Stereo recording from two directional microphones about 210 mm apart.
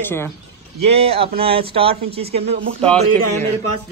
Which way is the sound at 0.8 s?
30° right (ahead or behind).